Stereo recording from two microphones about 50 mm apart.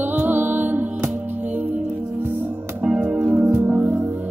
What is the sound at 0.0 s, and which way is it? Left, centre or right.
Music, right.